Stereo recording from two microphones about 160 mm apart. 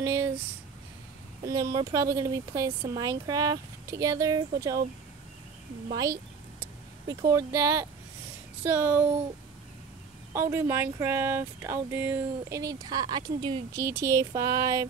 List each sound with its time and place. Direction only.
0.0 s a sound: 15° right (ahead or behind)
1.4 s speech: 20° right (ahead or behind)
6.6 s speech: 20° right (ahead or behind)
10.3 s speech: 15° right (ahead or behind)
13.7 s speech: 15° right (ahead or behind)